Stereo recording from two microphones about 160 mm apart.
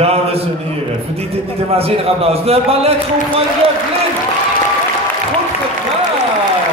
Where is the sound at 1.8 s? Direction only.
40° right (ahead or behind).